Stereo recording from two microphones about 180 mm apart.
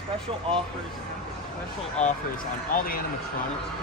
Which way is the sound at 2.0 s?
40° left (ahead or behind).